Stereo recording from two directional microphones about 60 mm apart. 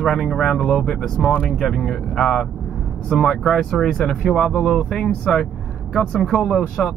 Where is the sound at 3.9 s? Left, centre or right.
Centre.